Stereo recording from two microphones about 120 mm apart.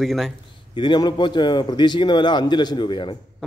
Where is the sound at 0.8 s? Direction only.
35° left (ahead or behind).